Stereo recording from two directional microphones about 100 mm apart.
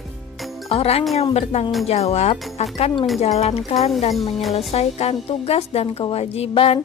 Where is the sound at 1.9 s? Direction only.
90° left.